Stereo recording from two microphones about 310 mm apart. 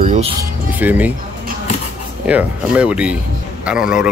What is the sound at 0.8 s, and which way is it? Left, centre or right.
Speech, centre.